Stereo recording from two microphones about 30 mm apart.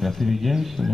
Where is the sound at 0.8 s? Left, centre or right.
Centre.